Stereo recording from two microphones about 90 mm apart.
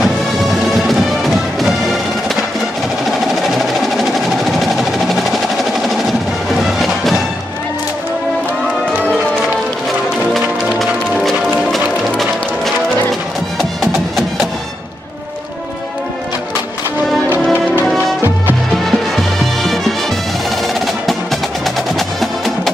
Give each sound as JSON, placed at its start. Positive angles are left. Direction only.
{"t": 1.6, "sound": "music", "side_deg": 0}
{"t": 4.5, "sound": "percussion", "side_deg": 0}
{"t": 6.6, "sound": "music", "side_deg": 0}
{"t": 10.3, "sound": "music", "side_deg": 5}
{"t": 17.3, "sound": "music", "side_deg": -20}
{"t": 18.9, "sound": "music", "side_deg": 0}